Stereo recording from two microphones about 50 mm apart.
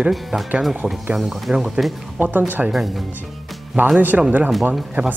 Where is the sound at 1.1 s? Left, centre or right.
Centre.